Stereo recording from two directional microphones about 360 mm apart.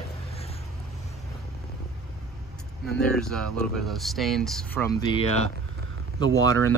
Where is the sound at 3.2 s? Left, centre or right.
Centre.